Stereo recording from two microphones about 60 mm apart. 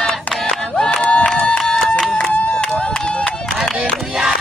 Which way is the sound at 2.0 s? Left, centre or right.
Centre.